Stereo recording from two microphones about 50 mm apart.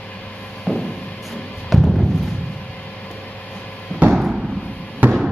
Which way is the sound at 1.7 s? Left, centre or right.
Centre.